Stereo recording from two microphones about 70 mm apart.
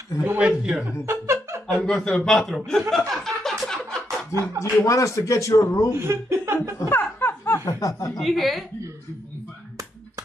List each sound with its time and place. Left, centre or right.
0.4 s a man's voice: centre
1.0 s music: right
1.7 s a man's voice: centre
2.9 s chuckle: centre
4.6 s speech: left
5.9 s speech: right
6.9 s laughter: left
7.6 s speech: left
8.2 s a woman's voice: centre